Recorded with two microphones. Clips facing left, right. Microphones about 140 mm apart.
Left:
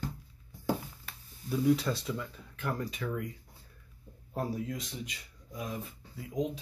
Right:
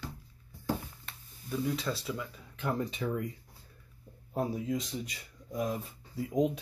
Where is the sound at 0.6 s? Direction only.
5° left (ahead or behind).